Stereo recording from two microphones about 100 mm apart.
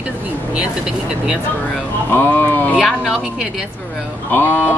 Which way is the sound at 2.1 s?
20° left (ahead or behind).